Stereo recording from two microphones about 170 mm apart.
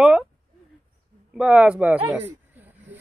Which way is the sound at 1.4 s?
5° right (ahead or behind).